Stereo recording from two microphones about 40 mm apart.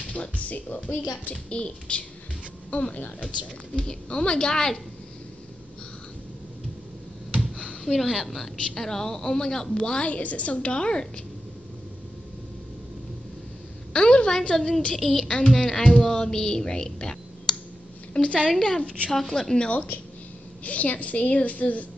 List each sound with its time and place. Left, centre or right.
0.1 s speech: left
0.8 s speech: left
1.3 s a woman's voice: left
3.7 s speech: left
7.3 s a sound: left
7.9 s a woman's voice: centre; by 10.0 s left
10.0 s a woman's voice: left
13.9 s speech: left
15.0 s child singing: centre
15.2 s a woman's voice: left
15.5 s a woman's voice: centre
19.6 s a woman's voice: left